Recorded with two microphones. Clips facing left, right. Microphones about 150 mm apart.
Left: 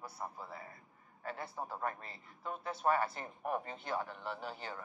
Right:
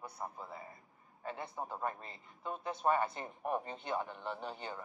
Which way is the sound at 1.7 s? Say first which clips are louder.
Even; 5° right (ahead or behind).